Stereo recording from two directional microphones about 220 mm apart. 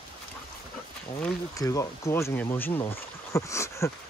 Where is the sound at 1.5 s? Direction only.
15° left (ahead or behind).